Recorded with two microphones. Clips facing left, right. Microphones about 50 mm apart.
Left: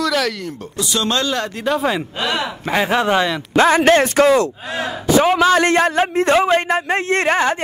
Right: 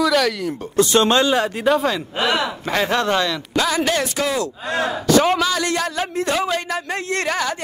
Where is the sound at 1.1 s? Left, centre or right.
Centre.